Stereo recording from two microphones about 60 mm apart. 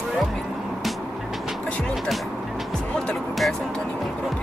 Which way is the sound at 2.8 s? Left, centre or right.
Centre.